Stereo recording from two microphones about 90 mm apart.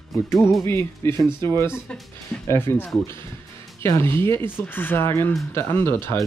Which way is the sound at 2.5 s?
25° left (ahead or behind).